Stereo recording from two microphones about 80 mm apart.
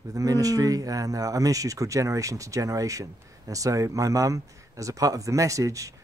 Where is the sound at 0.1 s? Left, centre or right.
Right.